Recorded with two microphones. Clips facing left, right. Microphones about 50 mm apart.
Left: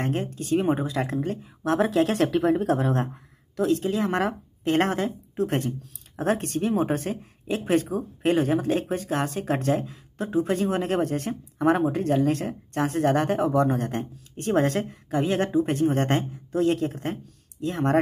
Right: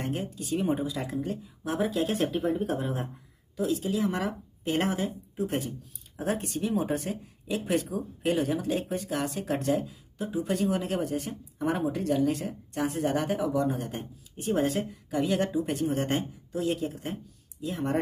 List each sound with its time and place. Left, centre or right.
0.0 s speech: left
3.5 s speech: left
10.4 s speech: left
15.0 s speech: left